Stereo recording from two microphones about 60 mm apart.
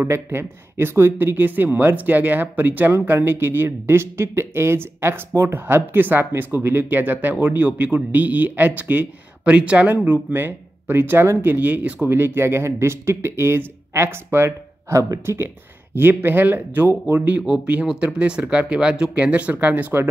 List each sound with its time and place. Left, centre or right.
0.0 s speech: right
12.1 s speech: right
17.8 s speech: centre